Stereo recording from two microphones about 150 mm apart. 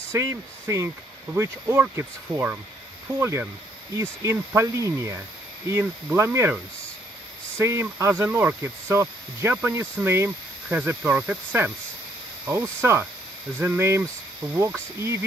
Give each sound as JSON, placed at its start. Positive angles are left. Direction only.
{"t": 0.1, "sound": "speech", "side_deg": -20}
{"t": 7.5, "sound": "speech", "side_deg": -20}